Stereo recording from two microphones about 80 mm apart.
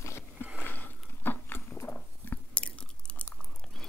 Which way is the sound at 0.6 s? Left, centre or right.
Left.